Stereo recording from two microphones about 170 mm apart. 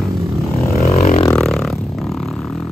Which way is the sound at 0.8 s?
35° left (ahead or behind).